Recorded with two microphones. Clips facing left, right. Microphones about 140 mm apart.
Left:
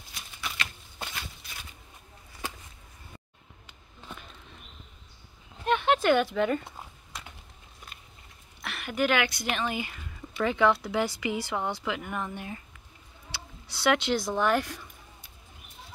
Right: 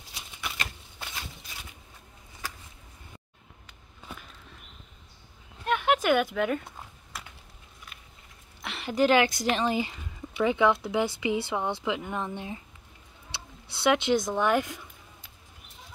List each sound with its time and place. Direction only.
5.7 s speech: 5° right (ahead or behind)
8.6 s a woman's voice: 30° right (ahead or behind)
10.3 s speech: 15° right (ahead or behind)